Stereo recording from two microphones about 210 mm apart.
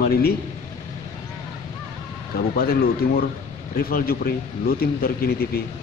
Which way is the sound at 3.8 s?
45° left (ahead or behind).